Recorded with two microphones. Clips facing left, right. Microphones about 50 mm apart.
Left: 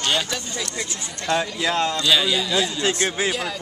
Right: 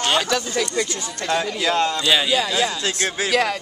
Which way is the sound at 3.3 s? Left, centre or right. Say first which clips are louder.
Right 6 dB; right.